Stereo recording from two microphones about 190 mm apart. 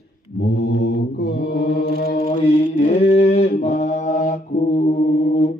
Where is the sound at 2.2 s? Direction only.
40° left (ahead or behind).